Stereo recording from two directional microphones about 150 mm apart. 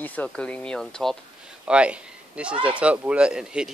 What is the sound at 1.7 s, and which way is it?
Speech, 10° right (ahead or behind).